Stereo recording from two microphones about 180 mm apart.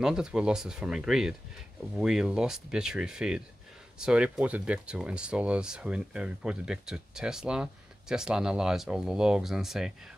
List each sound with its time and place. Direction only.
0.0 s speech: 5° right (ahead or behind)